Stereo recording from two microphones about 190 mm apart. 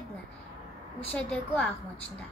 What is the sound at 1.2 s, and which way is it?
Speech, 5° left (ahead or behind).